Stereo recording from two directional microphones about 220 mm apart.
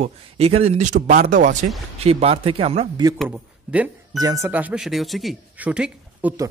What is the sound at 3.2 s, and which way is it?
Speech, 5° right (ahead or behind).